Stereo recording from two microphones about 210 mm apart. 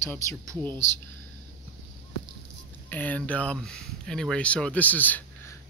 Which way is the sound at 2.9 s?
10° left (ahead or behind).